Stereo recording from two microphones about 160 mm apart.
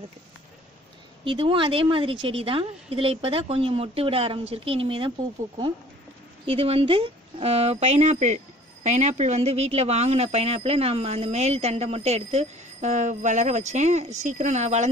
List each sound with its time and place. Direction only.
1.2 s a woman's voice: 35° right (ahead or behind)
6.4 s a woman's voice: 35° right (ahead or behind)